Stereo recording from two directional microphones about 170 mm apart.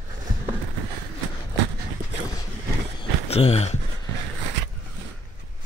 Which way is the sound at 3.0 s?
35° left (ahead or behind).